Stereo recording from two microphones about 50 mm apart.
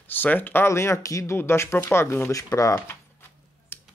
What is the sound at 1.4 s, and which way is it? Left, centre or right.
Speech, left.